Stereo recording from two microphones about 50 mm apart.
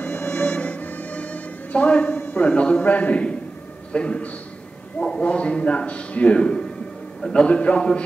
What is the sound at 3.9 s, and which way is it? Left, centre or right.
Speech, left.